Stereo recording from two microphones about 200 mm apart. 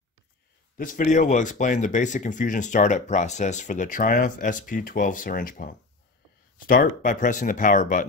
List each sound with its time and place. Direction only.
0.7 s speech: 40° left (ahead or behind)